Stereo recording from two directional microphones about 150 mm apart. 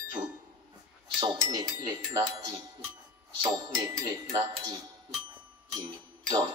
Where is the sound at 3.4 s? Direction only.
30° right (ahead or behind).